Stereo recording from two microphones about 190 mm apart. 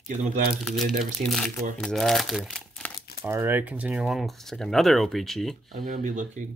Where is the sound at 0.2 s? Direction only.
50° right (ahead or behind).